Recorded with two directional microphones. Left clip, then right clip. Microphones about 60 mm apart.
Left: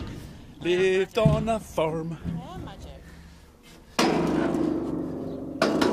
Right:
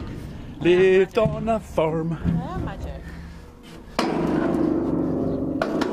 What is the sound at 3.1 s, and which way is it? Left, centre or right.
Music, right.